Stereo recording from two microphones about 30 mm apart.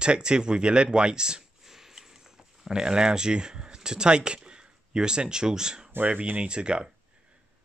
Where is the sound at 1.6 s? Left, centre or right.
Centre.